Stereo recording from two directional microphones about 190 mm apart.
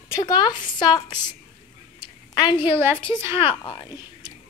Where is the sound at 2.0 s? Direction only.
25° left (ahead or behind).